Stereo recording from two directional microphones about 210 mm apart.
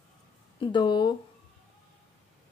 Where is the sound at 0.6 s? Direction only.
20° left (ahead or behind).